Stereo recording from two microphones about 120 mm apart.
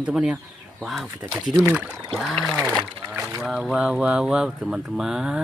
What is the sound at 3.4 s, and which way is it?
Speech, 5° right (ahead or behind).